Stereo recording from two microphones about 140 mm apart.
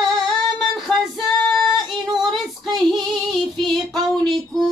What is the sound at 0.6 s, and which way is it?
Female singing, centre (ahead or behind).